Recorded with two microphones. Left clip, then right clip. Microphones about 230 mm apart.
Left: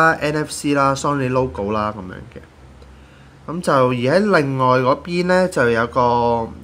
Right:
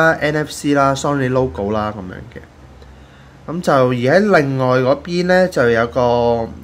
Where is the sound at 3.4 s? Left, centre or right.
Centre.